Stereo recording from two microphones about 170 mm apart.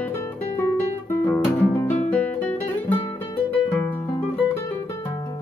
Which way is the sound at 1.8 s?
10° left (ahead or behind).